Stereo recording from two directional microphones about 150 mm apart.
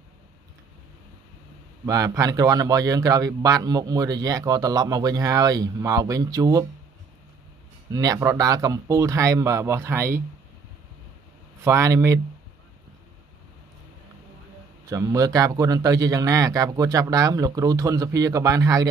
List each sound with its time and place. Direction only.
1.9 s a man's voice: 20° right (ahead or behind)
7.9 s a man's voice: 25° right (ahead or behind)
11.6 s a man's voice: 20° right (ahead or behind)
15.1 s a man's voice: 20° right (ahead or behind)